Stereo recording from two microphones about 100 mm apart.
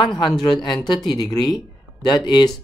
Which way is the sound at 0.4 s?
45° left (ahead or behind).